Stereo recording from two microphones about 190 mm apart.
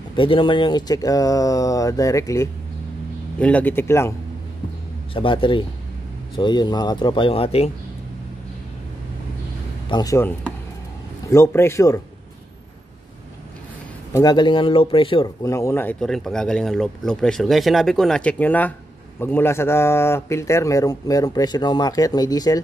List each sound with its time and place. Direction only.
0.1 s speech: 25° left (ahead or behind)
5.1 s speech: 25° left (ahead or behind)
9.8 s speech: 20° left (ahead or behind)
14.1 s speech: 20° left (ahead or behind)